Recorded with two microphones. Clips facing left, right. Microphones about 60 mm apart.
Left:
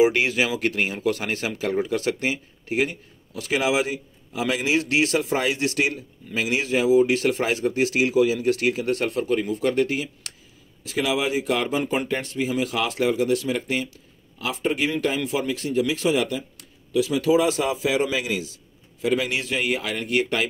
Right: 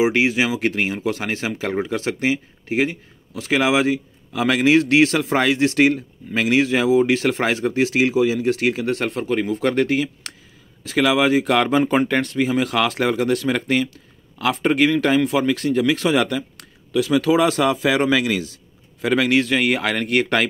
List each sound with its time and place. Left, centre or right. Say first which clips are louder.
0.0 s speech: right 1 dB; right
9.4 s speech: right 3 dB; right
11.0 s a man's voice: right 7 dB; right
15.1 s a man's voice: right 7 dB; right